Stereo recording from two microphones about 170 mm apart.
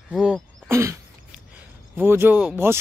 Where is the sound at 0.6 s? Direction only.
15° right (ahead or behind).